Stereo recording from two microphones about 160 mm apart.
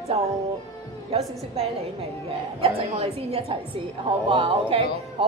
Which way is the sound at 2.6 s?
35° right (ahead or behind).